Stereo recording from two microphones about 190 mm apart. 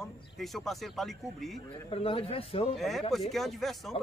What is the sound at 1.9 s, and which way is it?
Speech, 30° left (ahead or behind).